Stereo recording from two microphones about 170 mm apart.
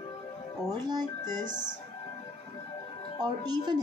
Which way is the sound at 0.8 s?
25° right (ahead or behind).